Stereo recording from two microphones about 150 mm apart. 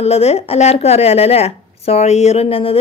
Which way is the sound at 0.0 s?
45° left (ahead or behind).